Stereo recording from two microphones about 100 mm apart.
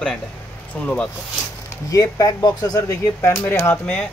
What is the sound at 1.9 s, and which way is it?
Speech, 35° left (ahead or behind).